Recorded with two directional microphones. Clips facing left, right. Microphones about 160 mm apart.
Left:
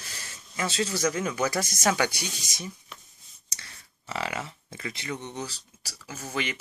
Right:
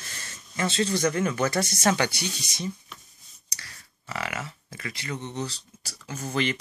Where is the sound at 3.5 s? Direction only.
25° left (ahead or behind).